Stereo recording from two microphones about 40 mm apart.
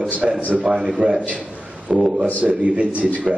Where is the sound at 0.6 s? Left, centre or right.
Centre.